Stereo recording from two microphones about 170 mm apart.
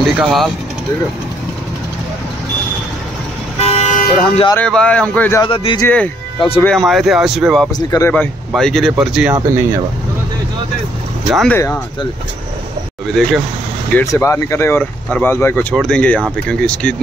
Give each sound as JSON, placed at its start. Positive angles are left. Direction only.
{"t": 0.2, "sound": "speech", "side_deg": 0}
{"t": 3.5, "sound": "vehicle", "side_deg": 40}
{"t": 4.6, "sound": "speech", "side_deg": 5}
{"t": 5.4, "sound": "speech", "side_deg": 30}
{"t": 5.8, "sound": "speech", "side_deg": 10}
{"t": 7.7, "sound": "speech", "side_deg": 20}
{"t": 8.1, "sound": "speech", "side_deg": 5}
{"t": 11.3, "sound": "speech", "side_deg": 10}
{"t": 13.0, "sound": "speech", "side_deg": 5}
{"t": 13.9, "sound": "speech", "side_deg": 15}